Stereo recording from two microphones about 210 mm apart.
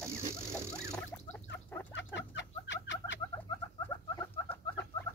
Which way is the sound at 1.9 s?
60° left (ahead or behind).